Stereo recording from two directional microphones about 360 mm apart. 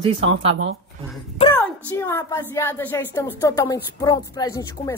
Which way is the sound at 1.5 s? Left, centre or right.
Centre.